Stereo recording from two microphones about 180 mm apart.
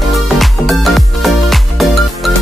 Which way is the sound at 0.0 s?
Centre (ahead or behind).